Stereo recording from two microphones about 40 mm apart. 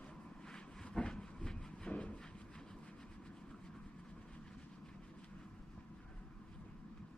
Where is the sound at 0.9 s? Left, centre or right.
Centre.